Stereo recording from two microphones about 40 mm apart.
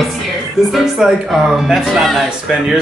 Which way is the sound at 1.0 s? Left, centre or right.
Centre.